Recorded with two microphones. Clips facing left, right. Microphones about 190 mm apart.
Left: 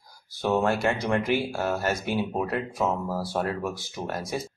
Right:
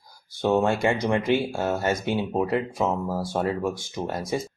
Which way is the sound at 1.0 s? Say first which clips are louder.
Right 2 dB; 20° right (ahead or behind).